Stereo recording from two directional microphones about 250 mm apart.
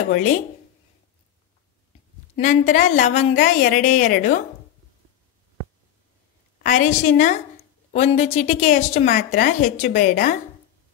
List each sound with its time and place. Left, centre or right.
0.1 s a woman's voice: left
2.3 s a woman's voice: left
6.6 s a woman's voice: left